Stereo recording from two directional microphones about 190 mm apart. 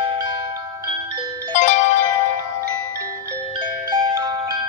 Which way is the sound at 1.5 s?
40° left (ahead or behind).